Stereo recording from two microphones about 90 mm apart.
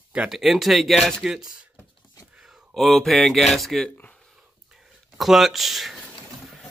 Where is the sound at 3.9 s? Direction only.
15° left (ahead or behind).